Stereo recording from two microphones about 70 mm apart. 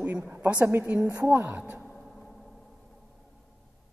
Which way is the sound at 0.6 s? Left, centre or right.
Right.